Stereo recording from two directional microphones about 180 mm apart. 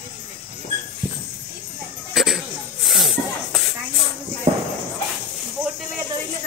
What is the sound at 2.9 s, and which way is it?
Snake, centre (ahead or behind).